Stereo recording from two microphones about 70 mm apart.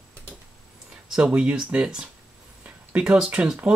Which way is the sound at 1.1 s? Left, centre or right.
Centre.